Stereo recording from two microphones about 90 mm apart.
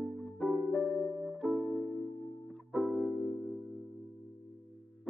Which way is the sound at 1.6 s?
20° right (ahead or behind).